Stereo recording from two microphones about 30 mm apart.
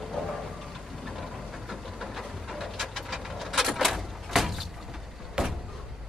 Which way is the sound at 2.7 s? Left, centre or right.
Centre.